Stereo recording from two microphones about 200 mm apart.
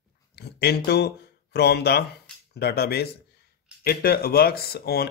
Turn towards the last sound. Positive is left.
turn(degrees=50)  # may be behind; listen again after turning